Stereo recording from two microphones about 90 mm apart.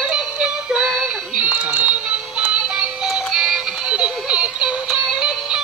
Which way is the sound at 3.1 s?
10° right (ahead or behind).